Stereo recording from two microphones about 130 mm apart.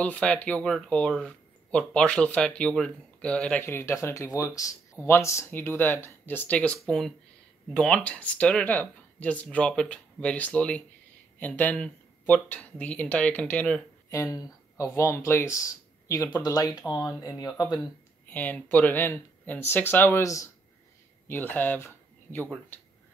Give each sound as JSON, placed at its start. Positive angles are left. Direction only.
{"t": 0.0, "sound": "speech", "side_deg": 10}
{"t": 14.1, "sound": "speech", "side_deg": 25}
{"t": 18.3, "sound": "speech", "side_deg": 10}